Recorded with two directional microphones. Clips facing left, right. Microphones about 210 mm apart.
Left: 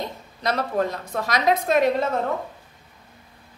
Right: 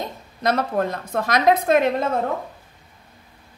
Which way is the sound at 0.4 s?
50° right (ahead or behind).